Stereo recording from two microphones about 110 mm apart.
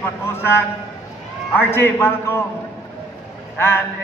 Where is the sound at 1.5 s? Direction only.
20° left (ahead or behind).